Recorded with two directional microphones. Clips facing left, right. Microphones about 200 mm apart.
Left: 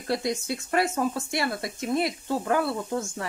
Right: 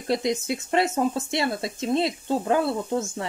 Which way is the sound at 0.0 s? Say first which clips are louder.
Right 3 dB; 20° right (ahead or behind).